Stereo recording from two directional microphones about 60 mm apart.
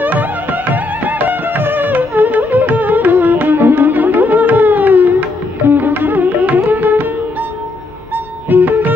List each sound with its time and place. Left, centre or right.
0.0 s music: right
8.5 s music: right